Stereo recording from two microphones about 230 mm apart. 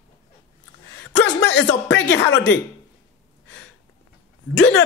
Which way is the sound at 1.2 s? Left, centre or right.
Left.